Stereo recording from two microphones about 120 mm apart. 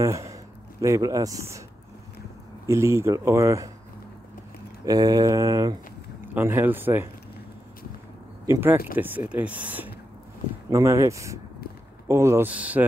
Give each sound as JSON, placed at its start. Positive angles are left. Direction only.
{"t": 0.0, "sound": "speech", "side_deg": -25}
{"t": 2.6, "sound": "speech", "side_deg": -25}
{"t": 4.8, "sound": "a sound", "side_deg": -30}
{"t": 6.2, "sound": "speech", "side_deg": -15}
{"t": 8.5, "sound": "speech", "side_deg": -20}
{"t": 10.7, "sound": "speech", "side_deg": -25}